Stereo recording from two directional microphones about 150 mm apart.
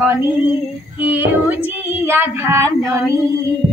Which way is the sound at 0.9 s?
10° right (ahead or behind).